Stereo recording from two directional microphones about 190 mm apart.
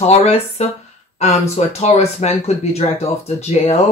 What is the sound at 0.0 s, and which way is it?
Speech, 35° left (ahead or behind).